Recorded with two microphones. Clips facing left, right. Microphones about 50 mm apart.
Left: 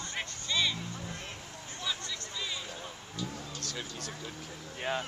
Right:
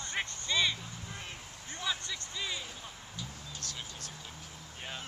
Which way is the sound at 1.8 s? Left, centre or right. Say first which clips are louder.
Right 1 dB; centre.